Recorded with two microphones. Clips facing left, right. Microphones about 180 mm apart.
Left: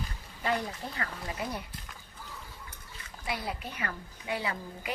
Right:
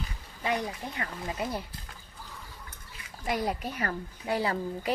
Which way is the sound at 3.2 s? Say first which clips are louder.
Right 6 dB; 45° right (ahead or behind).